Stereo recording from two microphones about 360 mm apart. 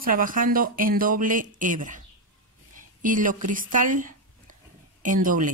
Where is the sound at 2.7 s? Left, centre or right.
Right.